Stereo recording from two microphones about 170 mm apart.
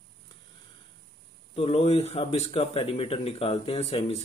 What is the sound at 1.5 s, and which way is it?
A man's voice, 35° left (ahead or behind).